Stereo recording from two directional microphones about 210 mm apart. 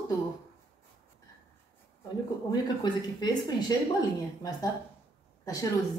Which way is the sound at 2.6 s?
20° left (ahead or behind).